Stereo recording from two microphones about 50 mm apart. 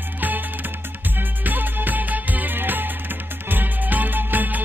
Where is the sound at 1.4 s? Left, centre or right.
Right.